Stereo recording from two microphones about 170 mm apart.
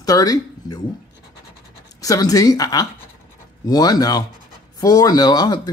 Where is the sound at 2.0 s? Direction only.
20° left (ahead or behind).